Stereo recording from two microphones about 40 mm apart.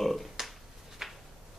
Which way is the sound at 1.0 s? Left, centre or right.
Centre.